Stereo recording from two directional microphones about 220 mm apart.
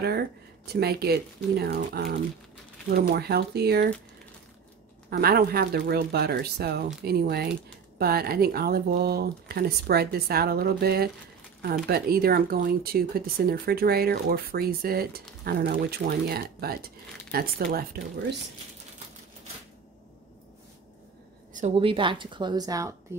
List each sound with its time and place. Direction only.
0.7 s speech: 45° right (ahead or behind)
5.1 s speech: 45° right (ahead or behind)
21.5 s a woman's voice: 25° right (ahead or behind)